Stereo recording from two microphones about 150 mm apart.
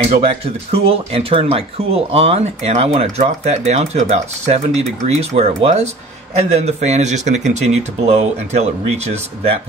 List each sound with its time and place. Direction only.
0.0 s speech: 40° right (ahead or behind)